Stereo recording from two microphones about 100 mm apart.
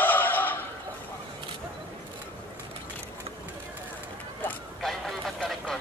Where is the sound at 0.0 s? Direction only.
20° left (ahead or behind).